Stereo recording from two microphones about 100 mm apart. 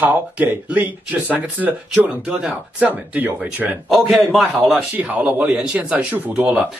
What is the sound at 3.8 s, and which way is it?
Speech, centre (ahead or behind).